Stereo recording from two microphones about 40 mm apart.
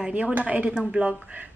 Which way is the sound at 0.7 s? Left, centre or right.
Right.